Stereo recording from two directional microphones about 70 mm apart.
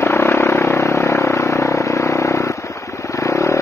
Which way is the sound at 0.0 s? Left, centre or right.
Left.